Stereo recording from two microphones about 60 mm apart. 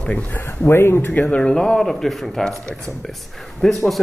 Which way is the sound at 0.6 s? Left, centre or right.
Left.